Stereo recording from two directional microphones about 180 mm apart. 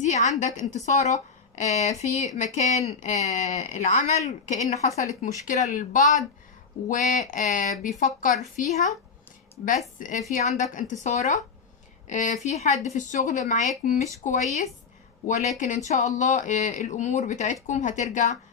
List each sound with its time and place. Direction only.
0.0 s a woman's voice: 40° left (ahead or behind)